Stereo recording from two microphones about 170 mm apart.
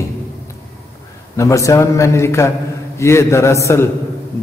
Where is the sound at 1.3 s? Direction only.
20° left (ahead or behind).